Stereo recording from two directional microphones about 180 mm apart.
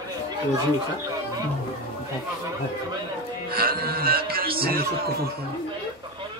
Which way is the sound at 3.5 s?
55° right (ahead or behind).